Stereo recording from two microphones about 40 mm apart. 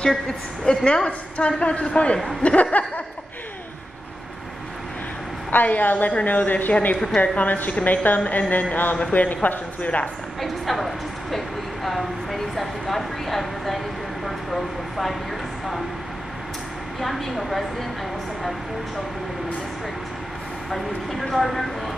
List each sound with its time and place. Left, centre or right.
0.1 s a woman's voice: centre; by 2.8 s left
5.5 s a woman's voice: left
10.4 s speech: centre
17.0 s speech: centre
20.7 s speech: centre